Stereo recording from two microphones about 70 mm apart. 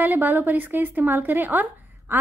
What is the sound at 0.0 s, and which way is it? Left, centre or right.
Speech, right.